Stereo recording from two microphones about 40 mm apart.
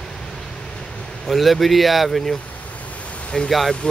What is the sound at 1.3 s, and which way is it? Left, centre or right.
Speech, centre.